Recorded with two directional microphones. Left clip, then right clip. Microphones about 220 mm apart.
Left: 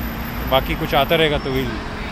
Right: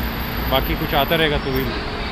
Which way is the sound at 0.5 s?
45° left (ahead or behind).